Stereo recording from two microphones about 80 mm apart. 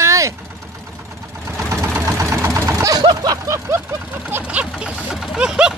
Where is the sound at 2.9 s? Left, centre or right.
Right.